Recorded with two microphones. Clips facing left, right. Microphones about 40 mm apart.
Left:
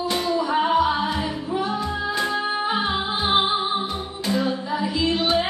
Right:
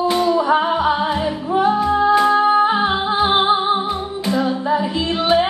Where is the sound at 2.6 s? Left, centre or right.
Right.